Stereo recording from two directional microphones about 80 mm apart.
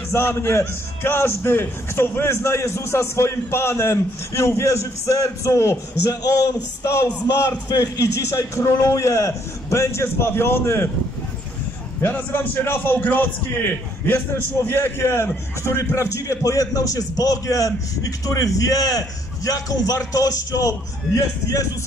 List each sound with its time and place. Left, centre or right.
0.1 s a man's voice: left
12.0 s a man's voice: left